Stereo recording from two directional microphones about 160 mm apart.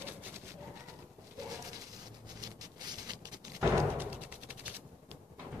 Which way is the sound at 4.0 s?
10° right (ahead or behind).